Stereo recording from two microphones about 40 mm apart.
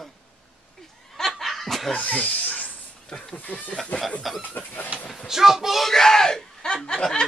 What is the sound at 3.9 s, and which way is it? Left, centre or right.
Speech, left.